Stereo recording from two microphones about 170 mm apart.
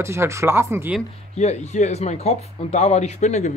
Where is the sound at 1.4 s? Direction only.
40° left (ahead or behind).